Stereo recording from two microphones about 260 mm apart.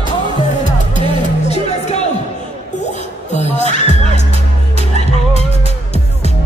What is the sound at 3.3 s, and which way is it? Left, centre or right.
Music, left.